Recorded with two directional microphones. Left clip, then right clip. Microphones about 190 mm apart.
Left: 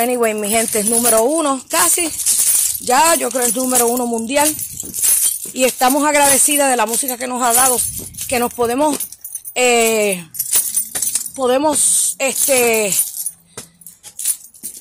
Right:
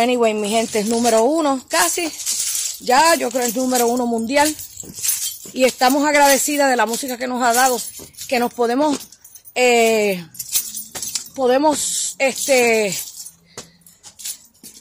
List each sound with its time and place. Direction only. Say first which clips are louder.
0.0 s a woman's voice: even; 15° right (ahead or behind)
2.1 s a sound: left 4 dB; 60° left (ahead or behind)
2.8 s speech: even; centre (ahead or behind)
5.0 s jingle bell: left 4 dB; 60° left (ahead or behind)
5.5 s speech: left 1 dB; 5° right (ahead or behind)
7.8 s speech: left 5 dB; 55° left (ahead or behind)
8.3 s speech: left 1 dB; 5° right (ahead or behind)
10.3 s keys jangling: left 3 dB; 55° left (ahead or behind)
11.1 s a woman's voice: even; 10° right (ahead or behind)